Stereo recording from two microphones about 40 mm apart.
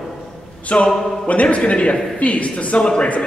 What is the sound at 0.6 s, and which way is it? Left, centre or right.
Speech, left.